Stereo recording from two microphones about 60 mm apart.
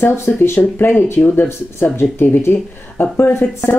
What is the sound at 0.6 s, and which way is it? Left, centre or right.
Speech, left.